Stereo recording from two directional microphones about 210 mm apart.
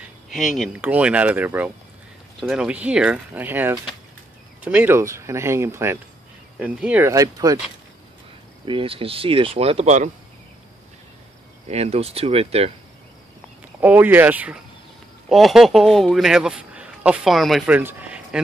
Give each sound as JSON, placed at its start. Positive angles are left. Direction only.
{"t": 0.6, "sound": "speech", "side_deg": -5}
{"t": 8.6, "sound": "speech", "side_deg": -25}
{"t": 11.6, "sound": "speech", "side_deg": -30}
{"t": 13.7, "sound": "a man's voice", "side_deg": -10}